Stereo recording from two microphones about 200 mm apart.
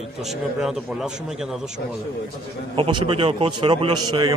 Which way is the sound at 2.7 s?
25° right (ahead or behind).